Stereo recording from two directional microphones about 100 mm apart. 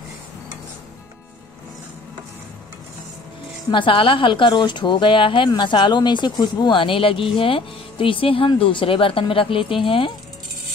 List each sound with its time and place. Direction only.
3.7 s a woman's voice: 60° left (ahead or behind)